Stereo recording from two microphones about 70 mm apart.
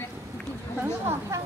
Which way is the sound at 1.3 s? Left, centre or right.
Right.